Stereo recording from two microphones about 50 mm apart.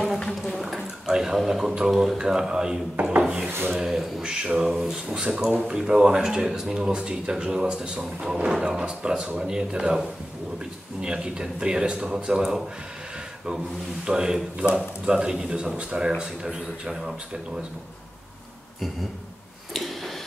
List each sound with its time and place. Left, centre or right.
0.4 s a sound: centre
1.9 s speech: centre
4.2 s a sound: centre
4.6 s speech: centre
11.0 s speech: centre
14.0 s speech: centre